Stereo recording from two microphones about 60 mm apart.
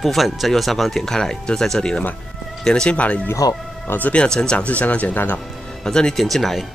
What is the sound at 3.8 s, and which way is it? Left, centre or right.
Speech, left.